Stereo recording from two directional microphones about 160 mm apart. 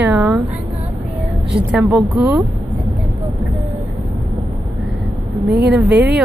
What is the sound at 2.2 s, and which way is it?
Speech, 20° right (ahead or behind).